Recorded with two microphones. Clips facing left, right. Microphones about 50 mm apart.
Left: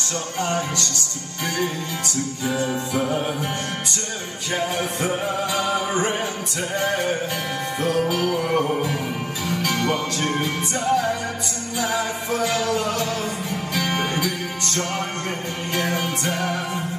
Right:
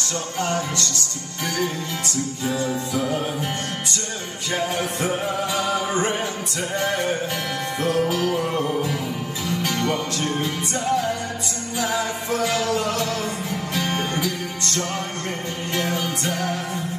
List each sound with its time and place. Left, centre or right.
0.4 s music: left
2.1 s music: left
4.6 s music: left
8.5 s music: left
15.7 s music: left